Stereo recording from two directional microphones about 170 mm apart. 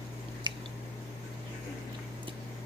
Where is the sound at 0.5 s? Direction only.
25° right (ahead or behind).